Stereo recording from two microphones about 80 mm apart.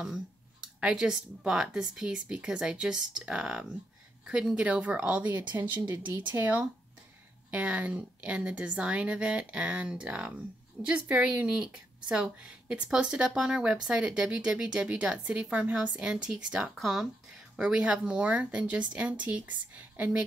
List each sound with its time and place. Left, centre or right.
0.7 s speech: centre
5.5 s speech: right
6.0 s speech: right
6.3 s speech: right
16.7 s speech: centre